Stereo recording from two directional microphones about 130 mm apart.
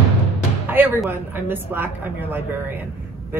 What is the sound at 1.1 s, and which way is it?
A woman's voice, 15° right (ahead or behind).